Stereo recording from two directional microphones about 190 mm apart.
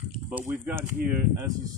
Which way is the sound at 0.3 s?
10° right (ahead or behind).